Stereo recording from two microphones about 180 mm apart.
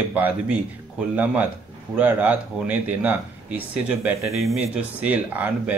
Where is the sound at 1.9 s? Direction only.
10° right (ahead or behind).